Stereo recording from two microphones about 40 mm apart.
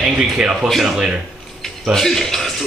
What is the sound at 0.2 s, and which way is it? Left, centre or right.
Speech, centre.